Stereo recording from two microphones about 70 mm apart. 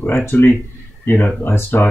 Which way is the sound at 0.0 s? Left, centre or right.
Left.